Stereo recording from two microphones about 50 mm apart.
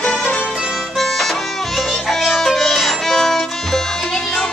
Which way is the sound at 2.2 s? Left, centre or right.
Centre.